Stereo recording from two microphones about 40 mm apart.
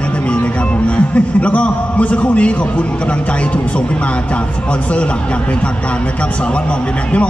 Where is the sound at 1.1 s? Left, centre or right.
Left.